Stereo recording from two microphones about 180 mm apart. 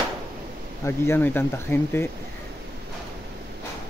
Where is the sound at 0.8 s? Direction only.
15° left (ahead or behind).